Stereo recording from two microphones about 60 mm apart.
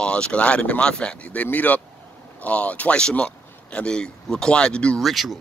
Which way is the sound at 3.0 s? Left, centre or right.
Centre.